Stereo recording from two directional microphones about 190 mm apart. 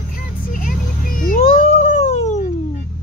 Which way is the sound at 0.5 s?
45° left (ahead or behind).